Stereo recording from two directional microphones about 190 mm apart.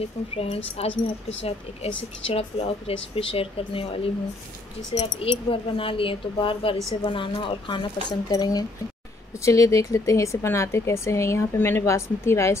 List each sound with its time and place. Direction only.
0.8 s speech: 30° left (ahead or behind); by 12.5 s 15° left (ahead or behind)